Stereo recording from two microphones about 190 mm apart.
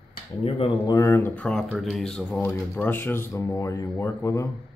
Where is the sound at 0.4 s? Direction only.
25° left (ahead or behind).